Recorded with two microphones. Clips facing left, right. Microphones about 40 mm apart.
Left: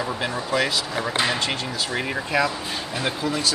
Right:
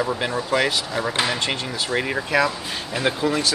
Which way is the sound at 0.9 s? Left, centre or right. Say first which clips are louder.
Right 1 dB; centre.